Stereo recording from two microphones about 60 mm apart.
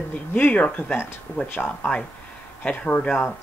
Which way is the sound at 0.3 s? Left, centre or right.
Left.